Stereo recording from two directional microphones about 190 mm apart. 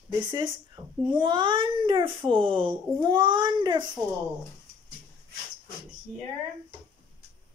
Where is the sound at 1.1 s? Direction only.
25° right (ahead or behind).